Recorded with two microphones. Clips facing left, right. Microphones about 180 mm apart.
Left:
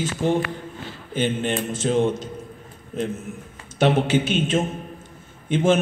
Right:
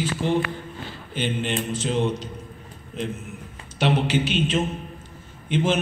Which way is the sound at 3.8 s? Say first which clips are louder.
Left 3 dB; 50° left (ahead or behind).